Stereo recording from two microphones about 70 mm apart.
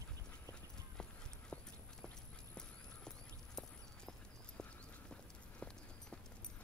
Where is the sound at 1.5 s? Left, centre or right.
Left.